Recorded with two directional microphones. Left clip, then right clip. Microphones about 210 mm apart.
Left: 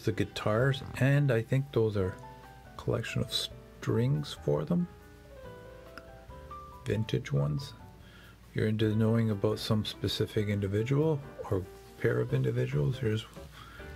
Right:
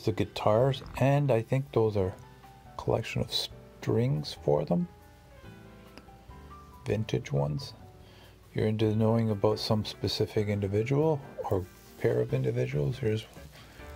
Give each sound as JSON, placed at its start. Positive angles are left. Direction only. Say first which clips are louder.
{"t": 0.0, "sound": "speech", "louder": "right 4 dB", "side_deg": 0}
{"t": 6.8, "sound": "speech", "louder": "right 2 dB", "side_deg": 0}